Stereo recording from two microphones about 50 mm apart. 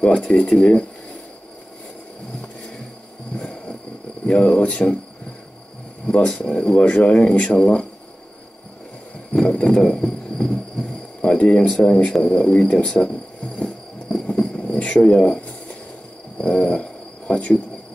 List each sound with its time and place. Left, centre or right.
0.0 s speech: left
3.3 s vehicle: centre
4.3 s speech: left
6.1 s speech: centre
9.3 s a sound: left
9.8 s speech: centre
14.0 s cricket: centre
16.3 s a sound: left